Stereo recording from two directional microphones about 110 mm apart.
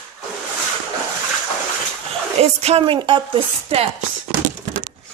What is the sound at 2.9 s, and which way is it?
Speech, 50° right (ahead or behind).